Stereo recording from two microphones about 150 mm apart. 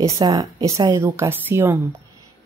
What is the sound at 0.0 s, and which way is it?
A woman's voice, 25° right (ahead or behind).